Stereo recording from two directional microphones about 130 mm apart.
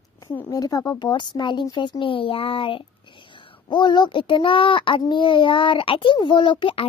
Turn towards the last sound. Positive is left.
turn(degrees=40)  # may be behind; listen again after turning